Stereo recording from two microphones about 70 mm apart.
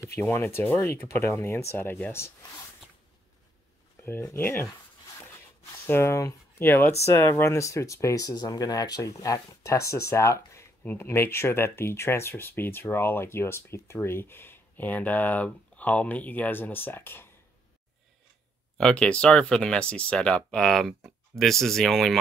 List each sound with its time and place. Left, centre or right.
0.1 s speech: left
4.4 s speech: left
5.9 s speech: left
10.8 s speech: left
11.1 s speech: left
18.8 s speech: centre